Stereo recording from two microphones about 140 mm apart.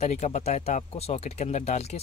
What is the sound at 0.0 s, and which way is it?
Speech, 50° left (ahead or behind).